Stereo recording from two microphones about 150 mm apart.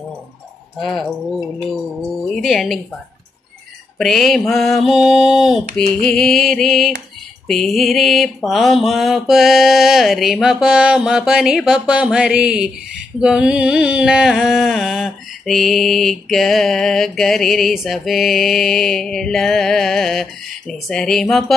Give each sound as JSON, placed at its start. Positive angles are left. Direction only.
{"t": 0.7, "sound": "music", "side_deg": 0}
{"t": 4.0, "sound": "music", "side_deg": 0}